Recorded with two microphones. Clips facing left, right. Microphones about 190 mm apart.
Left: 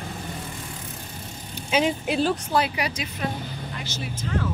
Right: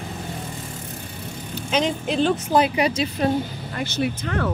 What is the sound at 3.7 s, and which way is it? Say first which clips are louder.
Speech: right 14 dB; 60° right (ahead or behind).